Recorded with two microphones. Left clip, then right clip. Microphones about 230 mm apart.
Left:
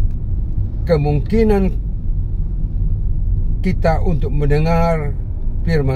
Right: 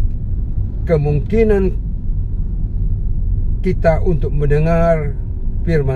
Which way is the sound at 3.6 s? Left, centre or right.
Left.